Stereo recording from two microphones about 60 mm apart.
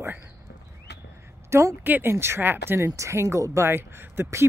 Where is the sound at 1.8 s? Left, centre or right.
Right.